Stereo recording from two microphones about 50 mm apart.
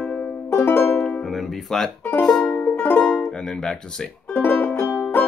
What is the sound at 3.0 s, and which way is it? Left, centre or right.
Speech, centre.